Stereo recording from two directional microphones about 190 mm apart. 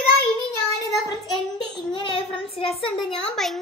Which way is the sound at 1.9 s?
25° left (ahead or behind).